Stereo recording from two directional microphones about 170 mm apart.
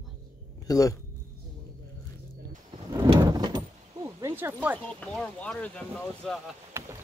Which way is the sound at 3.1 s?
25° right (ahead or behind).